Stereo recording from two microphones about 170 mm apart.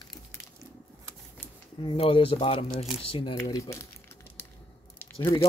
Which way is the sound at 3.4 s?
20° left (ahead or behind).